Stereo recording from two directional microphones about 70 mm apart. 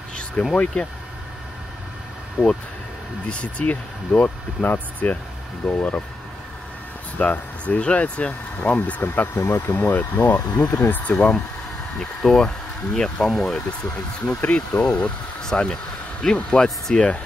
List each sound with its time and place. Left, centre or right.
0.4 s speech: centre
2.4 s speech: centre
3.3 s speech: centre
7.2 s speech: centre
9.0 s speech: left
9.6 s speech: left
9.9 s speech: left
12.3 s speech: centre